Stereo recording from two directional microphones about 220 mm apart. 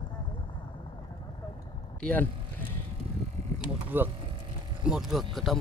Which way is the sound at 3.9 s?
10° right (ahead or behind).